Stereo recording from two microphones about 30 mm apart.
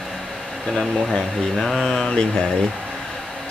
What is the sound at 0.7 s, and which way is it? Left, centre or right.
Speech, centre.